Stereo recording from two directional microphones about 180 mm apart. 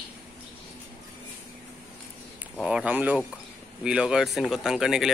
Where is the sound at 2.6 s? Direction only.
5° right (ahead or behind).